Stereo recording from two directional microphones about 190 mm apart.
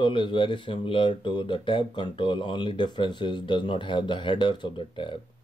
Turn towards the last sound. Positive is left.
turn(degrees=25)  # may be behind; listen again after turning